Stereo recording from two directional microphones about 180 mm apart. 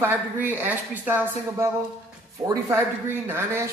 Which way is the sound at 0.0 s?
10° right (ahead or behind).